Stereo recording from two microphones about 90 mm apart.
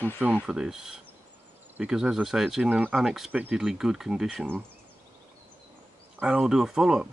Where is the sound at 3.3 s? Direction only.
15° right (ahead or behind).